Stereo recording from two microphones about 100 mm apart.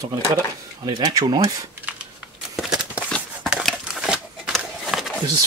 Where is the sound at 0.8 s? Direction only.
45° right (ahead or behind).